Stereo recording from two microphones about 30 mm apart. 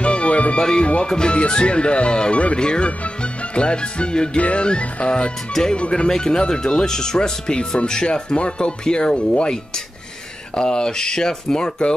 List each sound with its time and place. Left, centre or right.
0.0 s music: left
0.6 s speech: left
2.3 s speech: left
2.6 s speech: left
4.4 s speech: left
4.6 s speech: left
6.0 s speech: left
10.5 s speech: left